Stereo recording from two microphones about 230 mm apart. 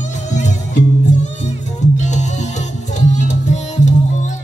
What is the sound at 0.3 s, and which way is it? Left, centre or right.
Music, left.